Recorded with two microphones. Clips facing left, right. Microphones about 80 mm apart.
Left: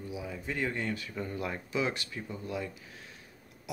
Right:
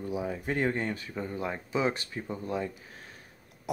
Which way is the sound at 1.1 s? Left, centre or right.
Right.